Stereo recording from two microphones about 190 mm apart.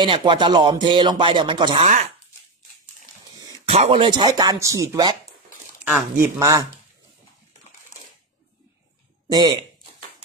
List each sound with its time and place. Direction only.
0.0 s speech: 25° right (ahead or behind)
3.3 s a sound: 20° right (ahead or behind)
3.6 s speech: 30° right (ahead or behind); by 6.6 s 15° right (ahead or behind)
9.3 s speech: 25° right (ahead or behind)